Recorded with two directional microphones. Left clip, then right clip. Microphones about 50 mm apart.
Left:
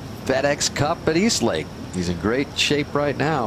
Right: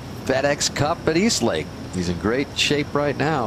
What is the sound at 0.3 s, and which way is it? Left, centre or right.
Speech, left.